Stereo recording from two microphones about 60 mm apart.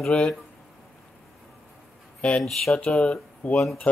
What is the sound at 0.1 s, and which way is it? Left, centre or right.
Speech, centre.